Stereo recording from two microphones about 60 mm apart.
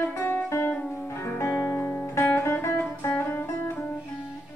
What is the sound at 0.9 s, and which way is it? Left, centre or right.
Music, left.